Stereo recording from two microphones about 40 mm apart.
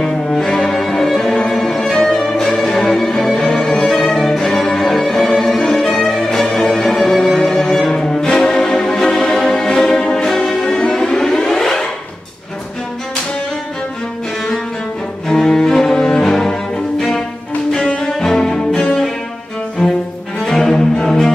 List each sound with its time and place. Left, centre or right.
0.0 s cello: centre
1.5 s music: centre
3.3 s violin: centre
6.3 s music: centre
15.2 s cello: centre
17.7 s music: centre
19.8 s cello: centre